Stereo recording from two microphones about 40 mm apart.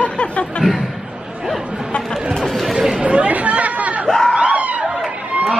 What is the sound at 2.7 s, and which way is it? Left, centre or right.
Chatter, centre.